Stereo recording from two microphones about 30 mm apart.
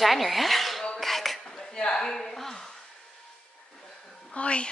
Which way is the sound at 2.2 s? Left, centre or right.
Centre.